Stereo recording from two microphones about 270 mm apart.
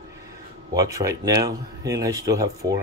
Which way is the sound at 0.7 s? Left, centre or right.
Centre.